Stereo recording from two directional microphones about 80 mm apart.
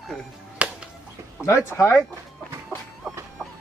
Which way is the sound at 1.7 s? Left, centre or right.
Left.